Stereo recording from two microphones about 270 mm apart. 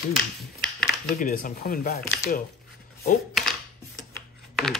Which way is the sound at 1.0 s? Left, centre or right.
Left.